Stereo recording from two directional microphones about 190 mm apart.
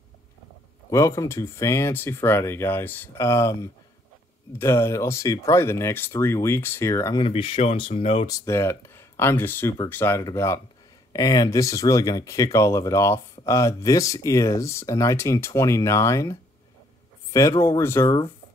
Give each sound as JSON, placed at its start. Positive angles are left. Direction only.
{"t": 0.8, "sound": "speech", "side_deg": 15}
{"t": 4.6, "sound": "speech", "side_deg": 15}
{"t": 7.2, "sound": "speech", "side_deg": 30}
{"t": 8.3, "sound": "speech", "side_deg": 15}